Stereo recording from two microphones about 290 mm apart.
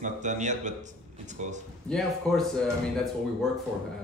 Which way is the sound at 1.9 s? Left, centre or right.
Centre.